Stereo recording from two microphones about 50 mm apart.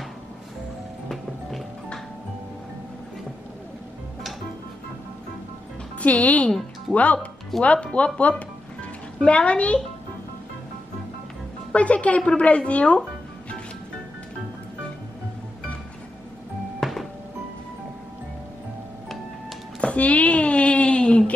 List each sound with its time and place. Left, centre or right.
5.9 s a woman's voice: left
11.7 s a woman's voice: left
16.8 s music: centre
19.8 s a sound: left